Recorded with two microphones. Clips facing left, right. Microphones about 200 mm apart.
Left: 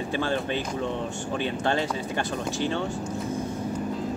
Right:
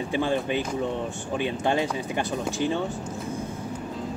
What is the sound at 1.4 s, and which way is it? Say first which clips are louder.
Speech: right 2 dB; 15° right (ahead or behind).